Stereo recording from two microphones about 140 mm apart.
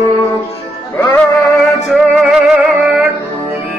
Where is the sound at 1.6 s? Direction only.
Centre (ahead or behind).